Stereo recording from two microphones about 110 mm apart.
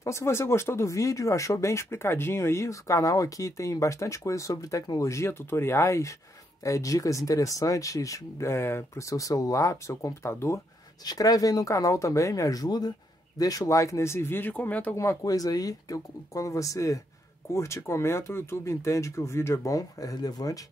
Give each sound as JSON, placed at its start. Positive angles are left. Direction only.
{"t": 0.0, "sound": "speech", "side_deg": 25}
{"t": 15.0, "sound": "speech", "side_deg": 30}